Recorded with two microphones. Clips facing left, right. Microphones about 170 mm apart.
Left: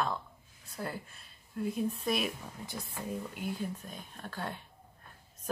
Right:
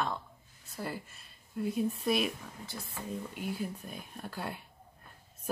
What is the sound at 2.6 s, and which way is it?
Speech, 15° left (ahead or behind).